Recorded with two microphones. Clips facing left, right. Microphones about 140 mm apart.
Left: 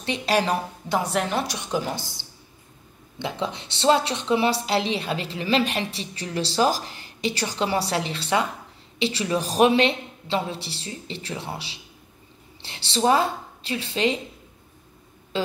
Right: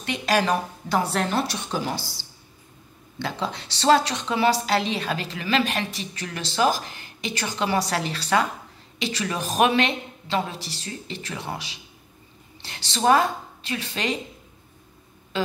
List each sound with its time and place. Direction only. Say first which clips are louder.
0.0 s a woman's voice: even; 25° left (ahead or behind)